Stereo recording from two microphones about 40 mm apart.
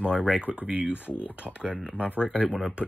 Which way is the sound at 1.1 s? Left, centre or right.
Left.